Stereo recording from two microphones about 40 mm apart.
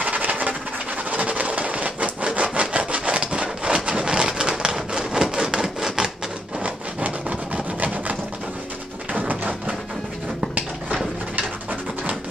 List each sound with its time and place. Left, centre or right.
0.0 s train: right
1.1 s wood: right
4.7 s a sound: centre
6.6 s wood: right
9.1 s tap: right